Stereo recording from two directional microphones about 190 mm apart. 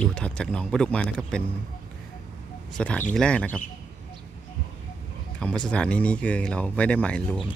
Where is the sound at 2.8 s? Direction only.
5° left (ahead or behind).